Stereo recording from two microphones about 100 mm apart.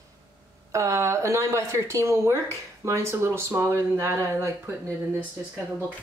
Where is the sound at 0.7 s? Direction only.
30° right (ahead or behind).